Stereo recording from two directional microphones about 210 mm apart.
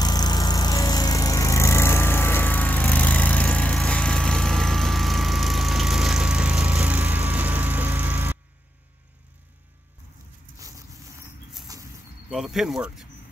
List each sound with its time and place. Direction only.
0.0 s music: 20° left (ahead or behind); by 8.4 s 10° right (ahead or behind)
11.6 s bird flight: 15° right (ahead or behind)
12.3 s speech: centre (ahead or behind)